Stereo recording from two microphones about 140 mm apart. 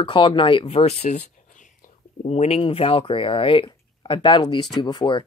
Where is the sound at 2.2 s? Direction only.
50° left (ahead or behind); by 5.2 s 35° left (ahead or behind).